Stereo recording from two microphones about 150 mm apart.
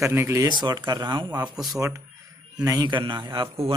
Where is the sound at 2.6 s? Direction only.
25° right (ahead or behind).